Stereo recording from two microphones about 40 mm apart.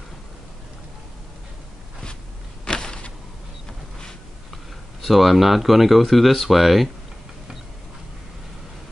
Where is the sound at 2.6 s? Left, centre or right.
Left.